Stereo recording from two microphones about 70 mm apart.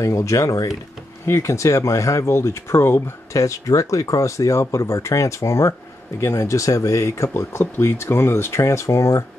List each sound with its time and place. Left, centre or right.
0.0 s speech: left
3.3 s speech: left